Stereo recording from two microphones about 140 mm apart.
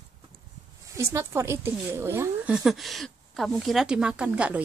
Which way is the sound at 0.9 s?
20° right (ahead or behind).